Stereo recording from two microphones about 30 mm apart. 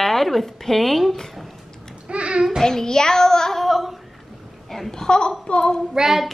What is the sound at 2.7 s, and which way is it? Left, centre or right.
Child singing, left.